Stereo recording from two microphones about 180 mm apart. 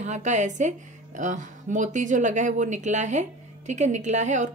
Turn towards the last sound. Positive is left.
turn(degrees=-40)  # may be behind; listen again after turning